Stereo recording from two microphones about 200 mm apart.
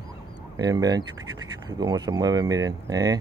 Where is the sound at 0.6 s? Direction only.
20° right (ahead or behind).